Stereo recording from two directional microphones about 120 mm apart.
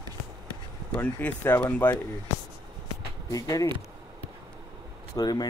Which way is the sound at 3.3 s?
30° left (ahead or behind).